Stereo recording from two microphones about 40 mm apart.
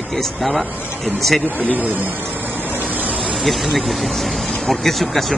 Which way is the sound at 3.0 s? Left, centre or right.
Right.